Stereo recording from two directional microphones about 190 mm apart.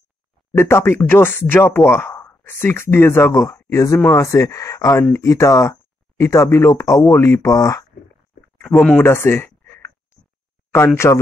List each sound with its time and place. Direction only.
0.5 s speech: 15° left (ahead or behind)
11.0 s speech: 15° left (ahead or behind)